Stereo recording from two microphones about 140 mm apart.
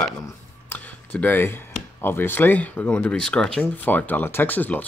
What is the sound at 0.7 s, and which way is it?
Speech, 10° left (ahead or behind).